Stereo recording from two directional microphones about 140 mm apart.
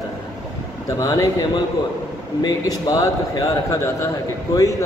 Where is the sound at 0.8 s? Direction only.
25° left (ahead or behind).